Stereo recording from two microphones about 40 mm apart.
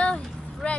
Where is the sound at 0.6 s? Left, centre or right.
Left.